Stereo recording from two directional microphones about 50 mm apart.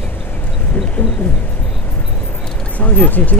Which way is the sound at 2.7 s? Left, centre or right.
Left.